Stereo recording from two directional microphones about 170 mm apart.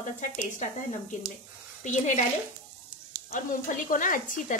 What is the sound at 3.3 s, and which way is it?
Speech, 55° left (ahead or behind).